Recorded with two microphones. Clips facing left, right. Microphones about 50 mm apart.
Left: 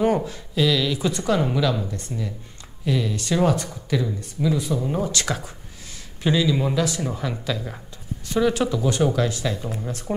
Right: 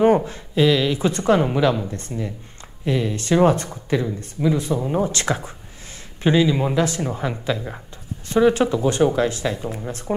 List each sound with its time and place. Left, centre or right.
0.0 s speech: right